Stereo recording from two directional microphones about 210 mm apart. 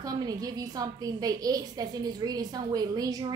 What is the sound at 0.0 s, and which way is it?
A woman's voice, 20° right (ahead or behind).